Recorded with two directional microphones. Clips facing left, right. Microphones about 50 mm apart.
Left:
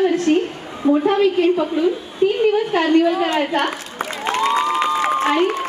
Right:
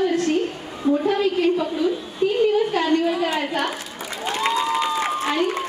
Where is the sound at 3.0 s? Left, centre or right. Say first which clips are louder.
Left 4 dB; left.